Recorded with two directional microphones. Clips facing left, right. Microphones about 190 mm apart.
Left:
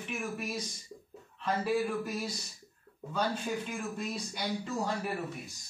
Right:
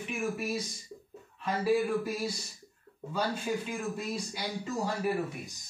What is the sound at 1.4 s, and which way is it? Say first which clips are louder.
Speech: right 2 dB; 10° right (ahead or behind).